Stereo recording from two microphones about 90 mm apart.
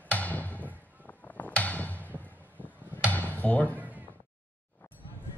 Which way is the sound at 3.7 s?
20° right (ahead or behind).